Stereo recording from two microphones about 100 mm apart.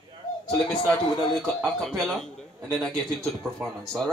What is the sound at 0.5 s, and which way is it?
Speech, 5° left (ahead or behind).